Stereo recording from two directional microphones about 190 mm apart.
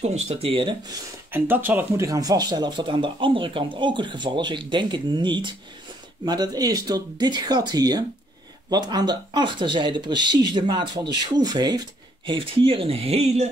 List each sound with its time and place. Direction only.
0.0 s speech: 35° right (ahead or behind)
1.3 s speech: 10° right (ahead or behind); by 13.5 s 35° right (ahead or behind)